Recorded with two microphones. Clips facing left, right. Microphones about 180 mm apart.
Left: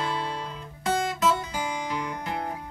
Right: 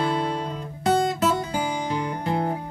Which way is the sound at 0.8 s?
35° right (ahead or behind).